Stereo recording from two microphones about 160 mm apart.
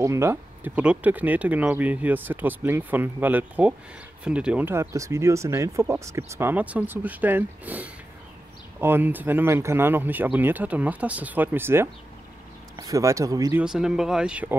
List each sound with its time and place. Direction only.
0.0 s speech: 15° right (ahead or behind)
13.6 s speech: 5° right (ahead or behind)